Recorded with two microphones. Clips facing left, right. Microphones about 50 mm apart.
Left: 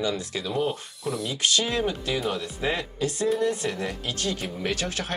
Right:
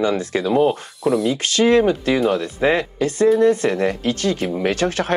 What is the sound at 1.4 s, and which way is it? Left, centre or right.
Speech, right.